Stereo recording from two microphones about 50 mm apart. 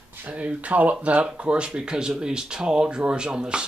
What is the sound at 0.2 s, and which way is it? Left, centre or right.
Speech, right.